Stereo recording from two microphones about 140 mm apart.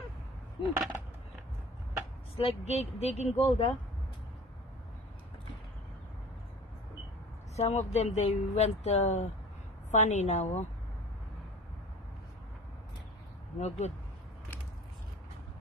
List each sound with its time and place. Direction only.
0.6 s a sound: 35° left (ahead or behind)
2.3 s speech: 45° left (ahead or behind)
7.5 s a woman's voice: 50° left (ahead or behind)
13.6 s speech: 50° left (ahead or behind)